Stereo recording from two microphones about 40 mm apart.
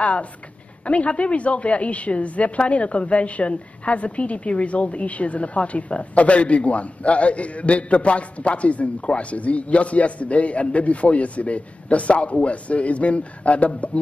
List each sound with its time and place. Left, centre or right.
0.0 s a woman's voice: left